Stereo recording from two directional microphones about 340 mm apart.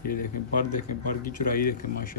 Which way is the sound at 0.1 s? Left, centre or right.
Left.